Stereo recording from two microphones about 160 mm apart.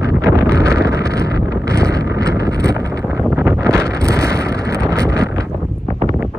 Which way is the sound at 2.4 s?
20° right (ahead or behind).